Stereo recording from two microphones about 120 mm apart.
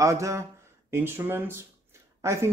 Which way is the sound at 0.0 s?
25° right (ahead or behind).